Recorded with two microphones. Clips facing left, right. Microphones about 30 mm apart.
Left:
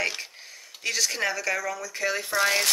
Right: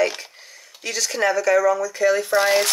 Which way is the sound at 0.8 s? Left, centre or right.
Centre.